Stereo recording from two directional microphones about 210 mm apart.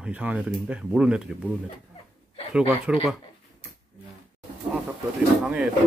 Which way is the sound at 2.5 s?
5° right (ahead or behind).